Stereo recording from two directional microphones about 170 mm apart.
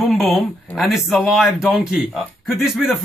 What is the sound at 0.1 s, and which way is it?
A man's voice, centre (ahead or behind).